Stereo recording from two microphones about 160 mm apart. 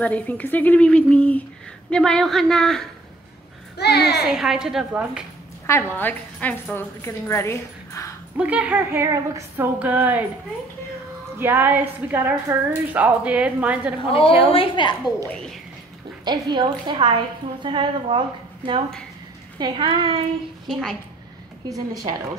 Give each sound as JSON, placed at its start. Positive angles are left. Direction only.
{"t": 0.0, "sound": "a woman's voice", "side_deg": 10}
{"t": 3.7, "sound": "a child's voice", "side_deg": 90}
{"t": 4.3, "sound": "a woman's voice", "side_deg": -5}
{"t": 5.7, "sound": "a woman's voice", "side_deg": 15}
{"t": 8.4, "sound": "a woman's voice", "side_deg": -10}
{"t": 11.3, "sound": "a woman's voice", "side_deg": -10}
{"t": 14.1, "sound": "a woman's voice", "side_deg": 35}
{"t": 16.3, "sound": "a woman's voice", "side_deg": -30}
{"t": 19.6, "sound": "a woman's voice", "side_deg": -30}
{"t": 20.6, "sound": "a woman's voice", "side_deg": 0}
{"t": 21.6, "sound": "a woman's voice", "side_deg": -25}